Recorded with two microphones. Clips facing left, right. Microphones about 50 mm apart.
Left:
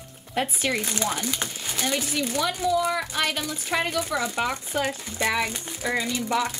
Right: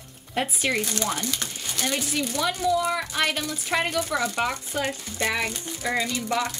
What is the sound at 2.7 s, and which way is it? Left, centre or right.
A woman's voice, centre.